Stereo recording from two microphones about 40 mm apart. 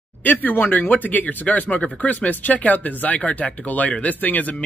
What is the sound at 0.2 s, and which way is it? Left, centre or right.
Speech, left.